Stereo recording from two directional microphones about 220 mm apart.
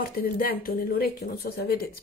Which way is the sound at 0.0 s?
40° left (ahead or behind).